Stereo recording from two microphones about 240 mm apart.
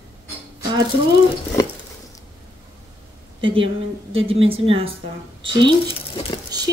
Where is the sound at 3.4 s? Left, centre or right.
Right.